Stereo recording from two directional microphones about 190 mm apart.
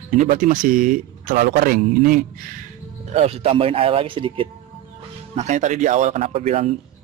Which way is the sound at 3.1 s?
35° right (ahead or behind).